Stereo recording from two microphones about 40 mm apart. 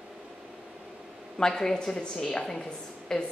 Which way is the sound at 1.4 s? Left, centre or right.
Centre.